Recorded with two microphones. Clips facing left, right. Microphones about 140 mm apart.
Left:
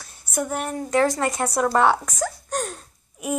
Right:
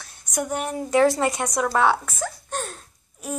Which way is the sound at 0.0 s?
5° left (ahead or behind).